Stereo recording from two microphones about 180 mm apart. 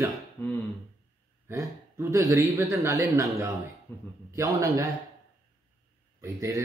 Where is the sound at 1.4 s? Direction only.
15° right (ahead or behind).